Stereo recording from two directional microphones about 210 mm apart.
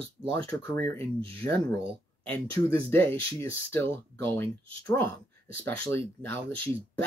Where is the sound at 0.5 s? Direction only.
10° left (ahead or behind).